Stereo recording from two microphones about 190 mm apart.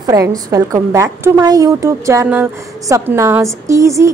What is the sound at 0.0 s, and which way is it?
A woman's voice, 20° right (ahead or behind).